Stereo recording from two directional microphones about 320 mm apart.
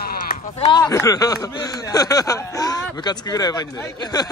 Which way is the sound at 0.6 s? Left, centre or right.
Centre.